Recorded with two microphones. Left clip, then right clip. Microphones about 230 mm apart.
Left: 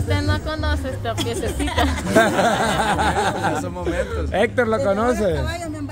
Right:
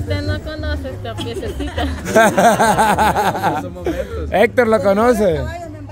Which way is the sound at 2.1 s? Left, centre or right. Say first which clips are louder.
Right 6 dB; right.